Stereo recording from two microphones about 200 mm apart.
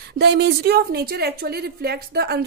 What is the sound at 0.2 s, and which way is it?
A woman's voice, 55° right (ahead or behind).